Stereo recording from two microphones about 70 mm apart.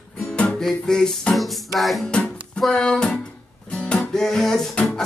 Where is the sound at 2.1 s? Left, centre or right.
Centre.